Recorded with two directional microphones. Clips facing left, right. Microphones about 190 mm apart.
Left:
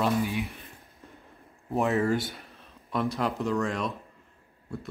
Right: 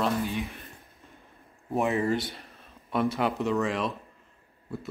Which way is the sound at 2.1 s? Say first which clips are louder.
Left 1 dB; centre (ahead or behind).